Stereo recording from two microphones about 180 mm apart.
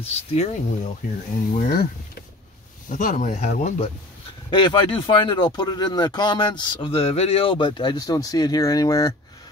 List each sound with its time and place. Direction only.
0.0 s speech: 35° left (ahead or behind)
1.5 s speech: 55° left (ahead or behind)
4.5 s speech: 25° left (ahead or behind)